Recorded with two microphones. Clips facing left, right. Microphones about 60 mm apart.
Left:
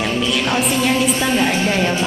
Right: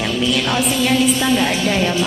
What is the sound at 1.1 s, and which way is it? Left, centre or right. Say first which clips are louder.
Speech: even; left.